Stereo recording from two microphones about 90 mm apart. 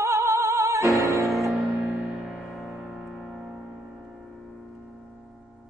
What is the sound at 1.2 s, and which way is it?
Music, centre (ahead or behind).